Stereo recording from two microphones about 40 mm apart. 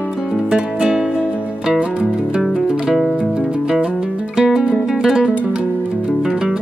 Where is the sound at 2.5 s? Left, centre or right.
Centre.